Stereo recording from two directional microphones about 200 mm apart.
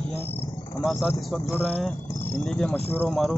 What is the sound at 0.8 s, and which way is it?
Speech, centre (ahead or behind).